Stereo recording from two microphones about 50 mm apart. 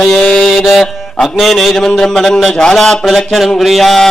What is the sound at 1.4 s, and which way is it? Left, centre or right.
A man's voice, centre.